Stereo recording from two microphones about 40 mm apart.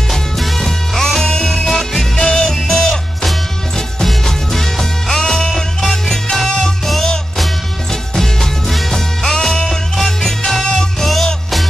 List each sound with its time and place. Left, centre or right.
0.1 s music: centre
1.3 s music: left
1.6 s music: centre